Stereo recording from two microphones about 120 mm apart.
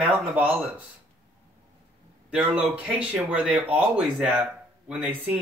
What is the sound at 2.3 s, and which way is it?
Speech, 10° right (ahead or behind).